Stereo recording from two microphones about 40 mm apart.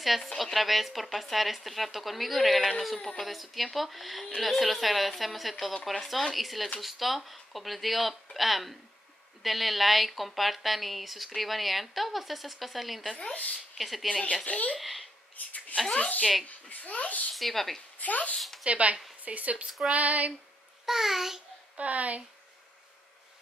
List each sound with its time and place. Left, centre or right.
0.0 s a woman's voice: centre
3.0 s speech: centre
3.3 s a woman's voice: centre
13.2 s a woman's voice: left
13.7 s speech: centre
14.4 s a child's voice: left
14.8 s a woman's voice: centre
15.4 s speech: left
15.9 s a child's voice: left
17.4 s a woman's voice: centre
17.9 s speech: left
18.6 s speech: right
20.8 s a child's voice: centre
21.7 s speech: right